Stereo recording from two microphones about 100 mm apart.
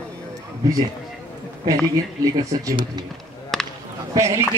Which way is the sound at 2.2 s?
40° right (ahead or behind).